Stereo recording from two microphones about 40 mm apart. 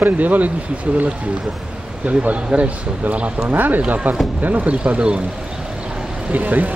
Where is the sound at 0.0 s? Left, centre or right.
Right.